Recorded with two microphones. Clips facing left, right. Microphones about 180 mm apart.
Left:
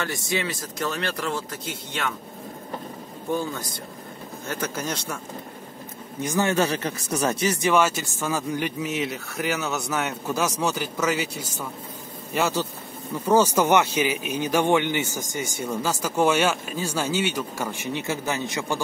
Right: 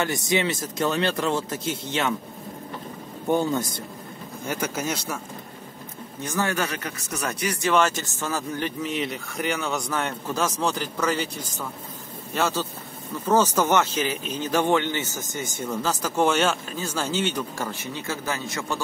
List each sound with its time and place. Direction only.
0.0 s speech: 20° right (ahead or behind)
4.5 s speech: 10° right (ahead or behind)
6.2 s a man's voice: 20° left (ahead or behind)
7.7 s a man's voice: 10° left (ahead or behind)